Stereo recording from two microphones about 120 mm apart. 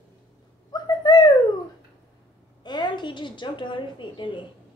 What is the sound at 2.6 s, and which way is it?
A woman's voice, 35° left (ahead or behind).